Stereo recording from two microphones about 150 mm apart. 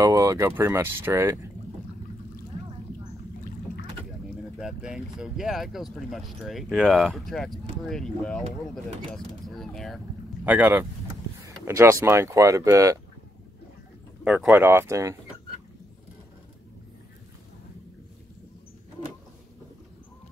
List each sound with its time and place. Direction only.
0.0 s speech: 20° right (ahead or behind)
4.6 s speech: 5° right (ahead or behind)
10.4 s speech: 10° right (ahead or behind)
14.2 s speech: 5° right (ahead or behind)